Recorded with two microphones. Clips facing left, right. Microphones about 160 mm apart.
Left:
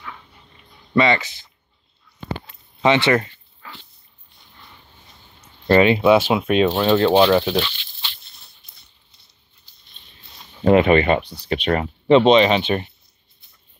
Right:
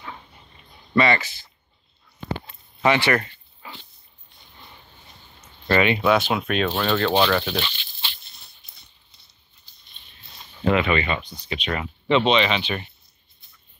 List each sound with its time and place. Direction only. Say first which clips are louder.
0.9 s speech: left 2 dB; 20° left (ahead or behind)
2.8 s speech: left 3 dB; 20° left (ahead or behind)
3.6 s dog: even; 15° right (ahead or behind)
5.7 s speech: left 6 dB; 30° left (ahead or behind)
6.3 s speech: left 6 dB; 20° left (ahead or behind)
10.6 s speech: left 7 dB; 45° left (ahead or behind)
11.8 s speech: left 6 dB; 40° left (ahead or behind)